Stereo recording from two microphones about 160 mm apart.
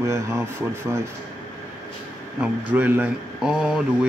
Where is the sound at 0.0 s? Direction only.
15° right (ahead or behind).